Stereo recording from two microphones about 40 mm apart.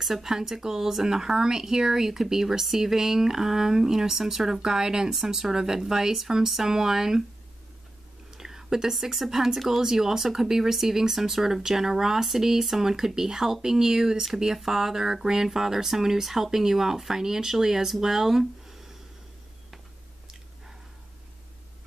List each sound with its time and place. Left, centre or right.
0.0 s speech: centre
8.3 s speech: centre